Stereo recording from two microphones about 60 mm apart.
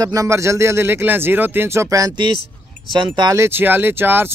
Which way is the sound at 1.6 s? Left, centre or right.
Right.